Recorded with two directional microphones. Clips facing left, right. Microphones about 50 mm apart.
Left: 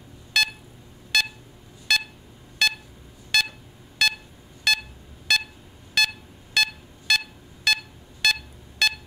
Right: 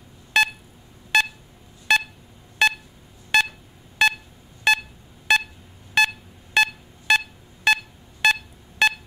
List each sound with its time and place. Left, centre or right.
0.3 s beep: right
1.1 s pulse: right
4.7 s beep: right
5.3 s pulse: right
5.9 s beep: right